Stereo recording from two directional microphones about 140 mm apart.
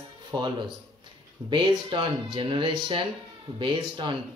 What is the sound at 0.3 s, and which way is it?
Speech, 35° right (ahead or behind).